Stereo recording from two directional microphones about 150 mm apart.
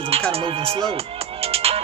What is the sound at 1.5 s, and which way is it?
Music, 40° right (ahead or behind).